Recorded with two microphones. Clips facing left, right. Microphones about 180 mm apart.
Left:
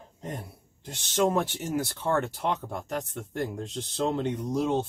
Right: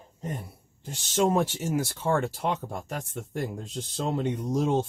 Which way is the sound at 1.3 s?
10° right (ahead or behind).